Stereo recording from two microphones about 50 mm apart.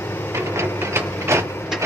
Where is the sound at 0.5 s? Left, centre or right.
Right.